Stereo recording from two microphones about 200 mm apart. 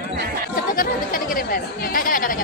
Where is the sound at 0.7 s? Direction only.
45° left (ahead or behind).